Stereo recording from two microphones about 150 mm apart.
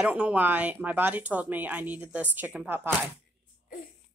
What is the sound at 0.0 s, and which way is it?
Speech, 10° right (ahead or behind).